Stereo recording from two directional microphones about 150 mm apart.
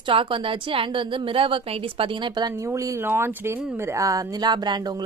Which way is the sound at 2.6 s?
20° right (ahead or behind).